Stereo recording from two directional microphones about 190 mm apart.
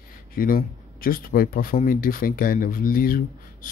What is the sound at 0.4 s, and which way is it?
Speech, 50° left (ahead or behind).